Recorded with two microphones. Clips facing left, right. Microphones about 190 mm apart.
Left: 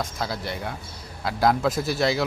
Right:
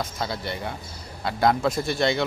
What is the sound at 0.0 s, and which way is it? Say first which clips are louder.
Speech: even; centre (ahead or behind).